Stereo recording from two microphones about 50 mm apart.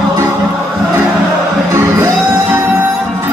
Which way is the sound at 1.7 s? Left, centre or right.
Right.